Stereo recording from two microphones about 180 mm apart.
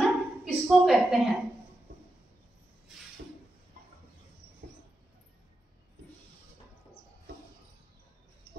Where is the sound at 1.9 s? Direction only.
70° right (ahead or behind).